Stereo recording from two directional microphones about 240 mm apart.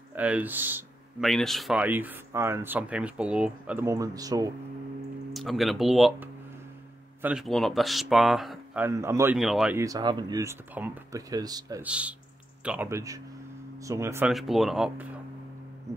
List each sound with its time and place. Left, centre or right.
0.1 s speech: centre
5.3 s speech: centre